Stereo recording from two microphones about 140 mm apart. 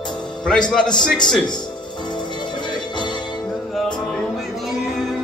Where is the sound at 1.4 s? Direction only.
30° left (ahead or behind).